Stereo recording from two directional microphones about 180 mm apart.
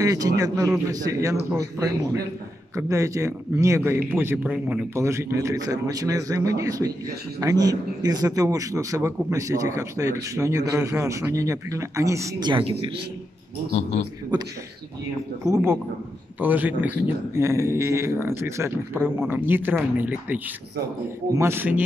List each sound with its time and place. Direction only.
0.0 s a man's voice: 20° right (ahead or behind)
13.7 s a man's voice: 35° left (ahead or behind)
15.4 s a man's voice: 15° right (ahead or behind)